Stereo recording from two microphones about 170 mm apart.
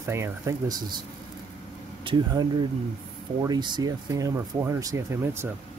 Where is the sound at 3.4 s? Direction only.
25° right (ahead or behind).